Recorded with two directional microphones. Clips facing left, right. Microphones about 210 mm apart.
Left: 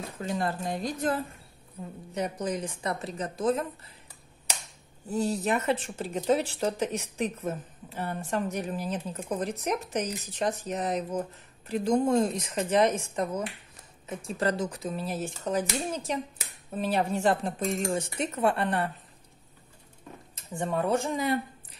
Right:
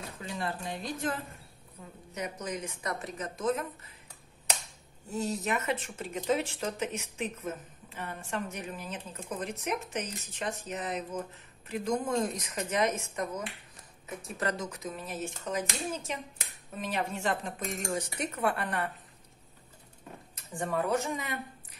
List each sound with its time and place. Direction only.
0.2 s speech: 45° left (ahead or behind)
2.1 s speech: 35° left (ahead or behind)
5.1 s speech: 35° left (ahead or behind)
20.3 s speech: 25° left (ahead or behind)